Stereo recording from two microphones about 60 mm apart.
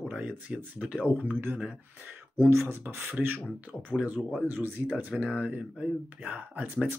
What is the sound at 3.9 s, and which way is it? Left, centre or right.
Speech, right.